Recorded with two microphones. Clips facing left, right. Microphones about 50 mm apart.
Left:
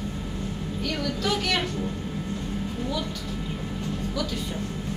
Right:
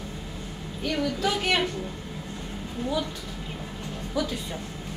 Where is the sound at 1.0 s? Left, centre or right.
Centre.